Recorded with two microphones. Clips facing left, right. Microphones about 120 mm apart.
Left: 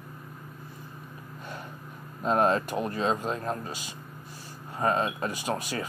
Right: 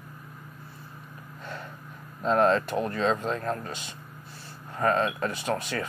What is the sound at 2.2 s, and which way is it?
Speech, 15° left (ahead or behind).